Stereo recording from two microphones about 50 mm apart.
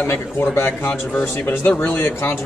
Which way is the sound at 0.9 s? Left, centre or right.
Left.